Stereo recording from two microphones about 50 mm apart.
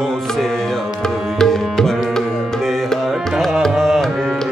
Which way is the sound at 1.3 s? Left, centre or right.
Centre.